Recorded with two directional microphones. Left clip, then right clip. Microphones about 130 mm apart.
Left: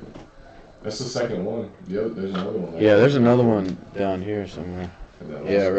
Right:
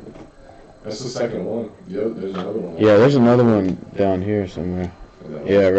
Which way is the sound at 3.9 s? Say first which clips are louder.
Right 5 dB; 20° right (ahead or behind).